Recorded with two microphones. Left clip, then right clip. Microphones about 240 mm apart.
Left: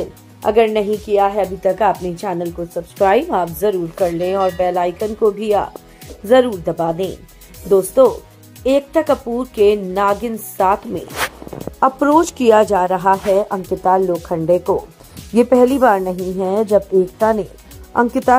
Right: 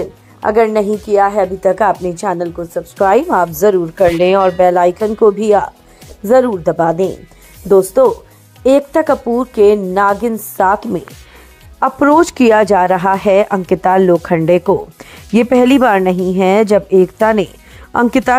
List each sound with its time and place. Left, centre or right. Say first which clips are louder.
0.4 s a woman's voice: right 2 dB; right